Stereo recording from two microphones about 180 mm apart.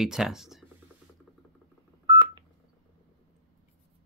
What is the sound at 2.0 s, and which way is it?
Telephone dialing, 25° right (ahead or behind).